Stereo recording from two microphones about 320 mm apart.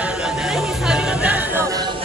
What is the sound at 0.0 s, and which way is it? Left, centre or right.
Music, centre.